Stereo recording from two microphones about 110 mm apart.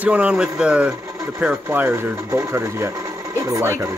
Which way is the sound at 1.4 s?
20° right (ahead or behind).